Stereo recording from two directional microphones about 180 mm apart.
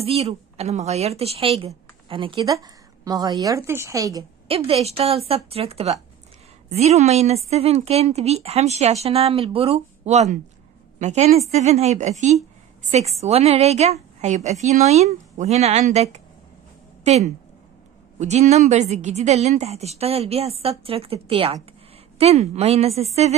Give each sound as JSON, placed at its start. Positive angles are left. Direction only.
{"t": 0.0, "sound": "a woman's voice", "side_deg": -35}
{"t": 4.5, "sound": "a woman's voice", "side_deg": -30}